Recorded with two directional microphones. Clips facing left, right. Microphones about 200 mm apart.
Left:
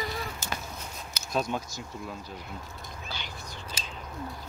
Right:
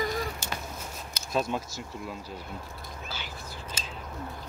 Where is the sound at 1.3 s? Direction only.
Centre (ahead or behind).